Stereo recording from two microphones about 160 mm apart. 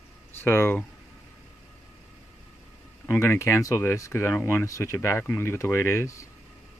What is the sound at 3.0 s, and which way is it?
Speech, 15° left (ahead or behind).